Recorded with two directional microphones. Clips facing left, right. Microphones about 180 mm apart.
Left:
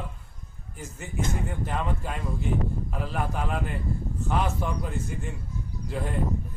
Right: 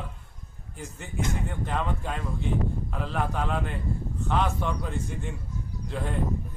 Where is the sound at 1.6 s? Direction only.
5° left (ahead or behind).